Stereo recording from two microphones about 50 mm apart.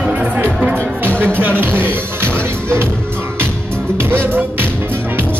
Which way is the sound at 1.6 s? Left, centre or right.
Right.